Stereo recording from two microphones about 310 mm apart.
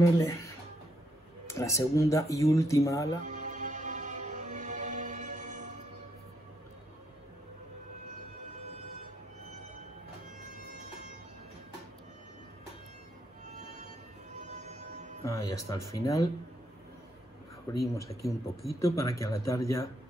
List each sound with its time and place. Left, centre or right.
0.2 s speech: centre
1.5 s speech: centre
3.3 s music: right
14.4 s train: right
15.2 s speech: centre
17.7 s speech: centre